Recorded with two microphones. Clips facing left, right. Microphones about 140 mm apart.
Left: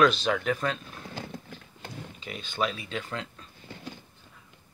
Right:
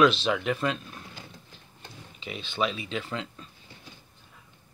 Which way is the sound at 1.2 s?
65° left (ahead or behind).